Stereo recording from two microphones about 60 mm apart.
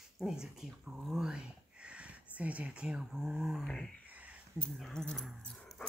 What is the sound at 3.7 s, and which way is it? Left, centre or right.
Speech, centre.